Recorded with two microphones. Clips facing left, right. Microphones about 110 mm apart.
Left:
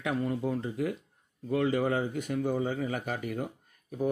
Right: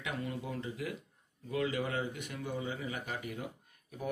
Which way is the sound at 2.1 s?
40° left (ahead or behind).